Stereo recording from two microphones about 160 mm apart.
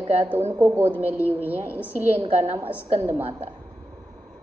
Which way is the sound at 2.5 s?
10° right (ahead or behind).